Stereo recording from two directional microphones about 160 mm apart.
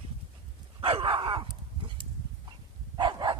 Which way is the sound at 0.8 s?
35° right (ahead or behind).